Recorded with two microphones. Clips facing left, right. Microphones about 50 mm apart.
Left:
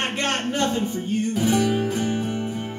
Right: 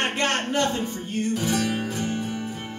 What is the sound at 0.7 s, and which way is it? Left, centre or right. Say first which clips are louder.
Music: left 4 dB; centre.